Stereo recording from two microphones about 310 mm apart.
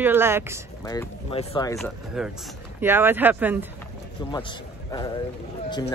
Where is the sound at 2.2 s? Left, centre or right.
Centre.